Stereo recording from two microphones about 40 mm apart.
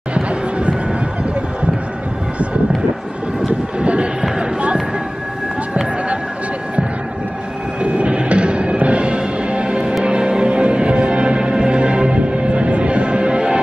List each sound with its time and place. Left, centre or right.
0.1 s music: right
3.8 s a sound: right
4.2 s basketball bounce: right
7.8 s music: right